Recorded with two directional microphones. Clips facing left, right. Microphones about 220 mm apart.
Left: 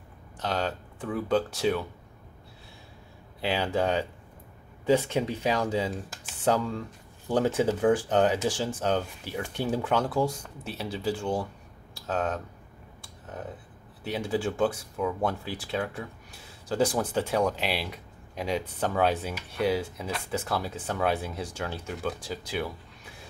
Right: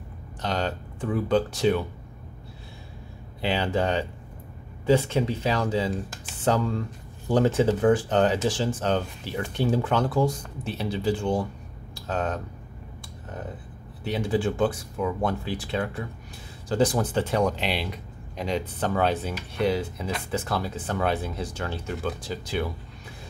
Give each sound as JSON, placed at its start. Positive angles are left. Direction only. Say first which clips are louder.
{"t": 0.4, "sound": "speech", "louder": "right 2 dB", "side_deg": 5}
{"t": 3.3, "sound": "speech", "louder": "right 2 dB", "side_deg": 5}
{"t": 11.9, "sound": "a sound", "louder": "right 1 dB", "side_deg": 5}
{"t": 14.0, "sound": "speech", "louder": "right 3 dB", "side_deg": 10}